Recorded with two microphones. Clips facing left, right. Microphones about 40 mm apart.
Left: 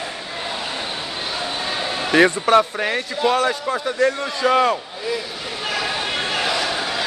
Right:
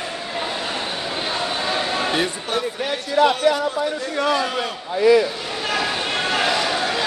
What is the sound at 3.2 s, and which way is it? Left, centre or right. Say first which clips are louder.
Speech: right 5 dB; right.